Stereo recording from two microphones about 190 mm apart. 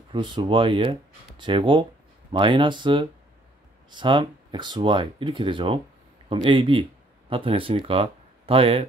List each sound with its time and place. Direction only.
0.1 s speech: 25° right (ahead or behind)